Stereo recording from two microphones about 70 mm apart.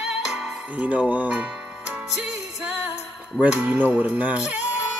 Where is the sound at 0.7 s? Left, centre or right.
Right.